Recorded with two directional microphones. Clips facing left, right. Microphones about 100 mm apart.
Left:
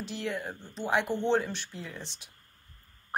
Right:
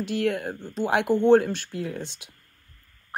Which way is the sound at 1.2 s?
50° right (ahead or behind).